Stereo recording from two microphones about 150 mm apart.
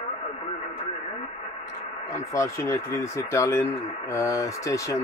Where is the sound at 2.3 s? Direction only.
20° left (ahead or behind).